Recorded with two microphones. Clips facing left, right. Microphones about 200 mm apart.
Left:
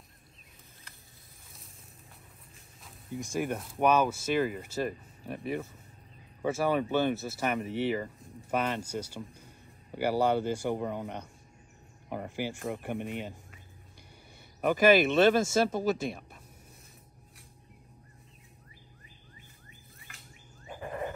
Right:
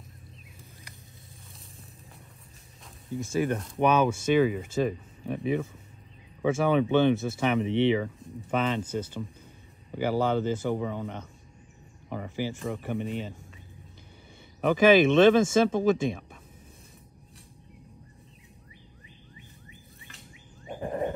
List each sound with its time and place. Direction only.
3.2 s a man's voice: 15° left (ahead or behind)
12.1 s a man's voice: 10° left (ahead or behind)
14.6 s speech: 5° left (ahead or behind)
20.6 s a sound: 30° right (ahead or behind)